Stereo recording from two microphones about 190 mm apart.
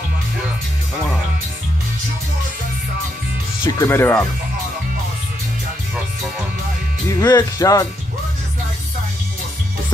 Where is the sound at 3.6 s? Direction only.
15° left (ahead or behind).